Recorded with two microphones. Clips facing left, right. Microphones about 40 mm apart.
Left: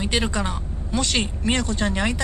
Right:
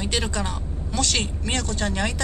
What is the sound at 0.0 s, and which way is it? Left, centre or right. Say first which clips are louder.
A woman's voice: left 3 dB; centre.